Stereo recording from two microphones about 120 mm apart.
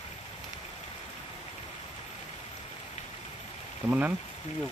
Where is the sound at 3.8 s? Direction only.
15° right (ahead or behind).